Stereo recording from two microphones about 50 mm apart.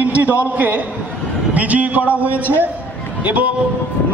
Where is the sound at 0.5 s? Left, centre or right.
Right.